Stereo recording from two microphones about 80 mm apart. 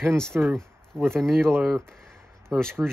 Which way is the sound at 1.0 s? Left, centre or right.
Centre.